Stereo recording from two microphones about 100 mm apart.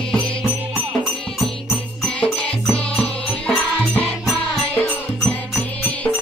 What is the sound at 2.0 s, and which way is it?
Music, 10° left (ahead or behind).